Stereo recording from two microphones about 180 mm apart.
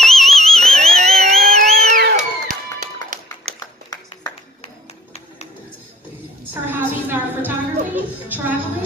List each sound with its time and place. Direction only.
0.0 s a sound: centre (ahead or behind)
0.8 s vehicle: centre (ahead or behind)
1.2 s vehicle: 40° right (ahead or behind)
2.0 s music: 55° right (ahead or behind)
3.5 s a sound: 20° left (ahead or behind)
6.7 s music: 10° right (ahead or behind)